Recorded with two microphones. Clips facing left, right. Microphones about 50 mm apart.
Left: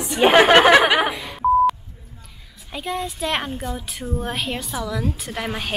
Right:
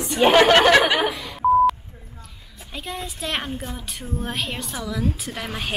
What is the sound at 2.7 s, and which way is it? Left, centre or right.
A woman's voice, centre.